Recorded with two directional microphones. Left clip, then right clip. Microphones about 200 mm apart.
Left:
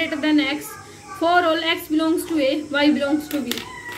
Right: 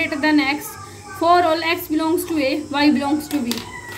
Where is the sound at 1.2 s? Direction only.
50° right (ahead or behind).